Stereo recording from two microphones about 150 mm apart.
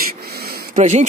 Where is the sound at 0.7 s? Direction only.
45° right (ahead or behind).